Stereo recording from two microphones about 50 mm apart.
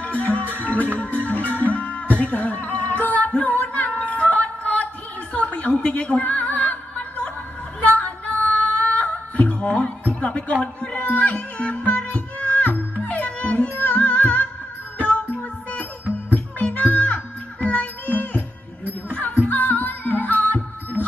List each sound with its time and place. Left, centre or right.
0.0 s music: left
7.8 s female singing: left
10.6 s a sound: left
11.0 s music: left
16.3 s music: left